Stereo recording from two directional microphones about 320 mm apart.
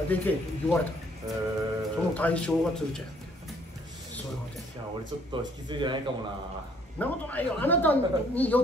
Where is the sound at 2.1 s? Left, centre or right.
Centre.